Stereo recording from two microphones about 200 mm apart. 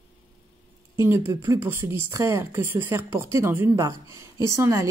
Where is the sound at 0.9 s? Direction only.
10° right (ahead or behind).